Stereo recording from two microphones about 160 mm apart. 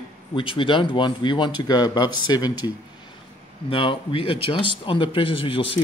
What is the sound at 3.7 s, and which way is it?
Speech, 35° left (ahead or behind).